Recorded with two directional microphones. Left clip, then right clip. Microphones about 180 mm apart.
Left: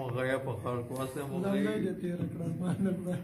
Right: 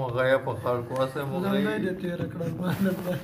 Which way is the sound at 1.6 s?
15° left (ahead or behind).